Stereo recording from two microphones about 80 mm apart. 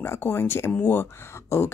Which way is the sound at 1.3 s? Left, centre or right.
Left.